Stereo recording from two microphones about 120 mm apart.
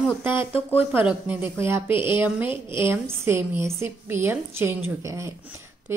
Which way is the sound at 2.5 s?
45° left (ahead or behind).